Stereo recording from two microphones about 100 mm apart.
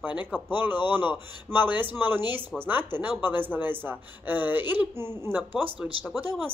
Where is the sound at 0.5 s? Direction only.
20° right (ahead or behind).